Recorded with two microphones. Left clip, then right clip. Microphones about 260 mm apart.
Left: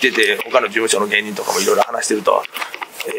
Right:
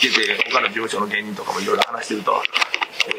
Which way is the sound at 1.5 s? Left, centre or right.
Left.